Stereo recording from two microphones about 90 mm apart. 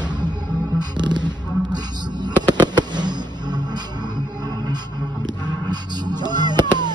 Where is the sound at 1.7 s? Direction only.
55° right (ahead or behind).